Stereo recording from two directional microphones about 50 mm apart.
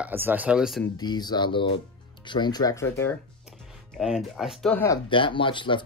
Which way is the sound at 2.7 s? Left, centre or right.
Left.